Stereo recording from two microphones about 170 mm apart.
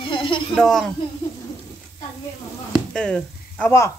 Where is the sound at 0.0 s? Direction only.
30° left (ahead or behind).